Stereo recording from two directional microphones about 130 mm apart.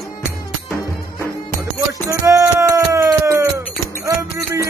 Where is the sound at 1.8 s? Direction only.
25° right (ahead or behind).